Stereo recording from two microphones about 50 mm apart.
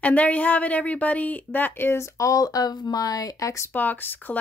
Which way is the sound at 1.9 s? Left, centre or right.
Left.